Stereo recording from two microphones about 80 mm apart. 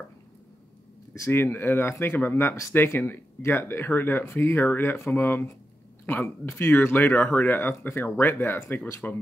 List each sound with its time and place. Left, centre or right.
1.3 s speech: left